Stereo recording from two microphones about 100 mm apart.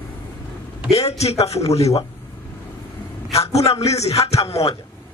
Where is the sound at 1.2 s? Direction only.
90° left.